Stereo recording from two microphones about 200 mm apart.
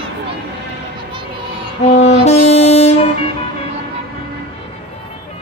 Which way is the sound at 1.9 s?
35° left (ahead or behind).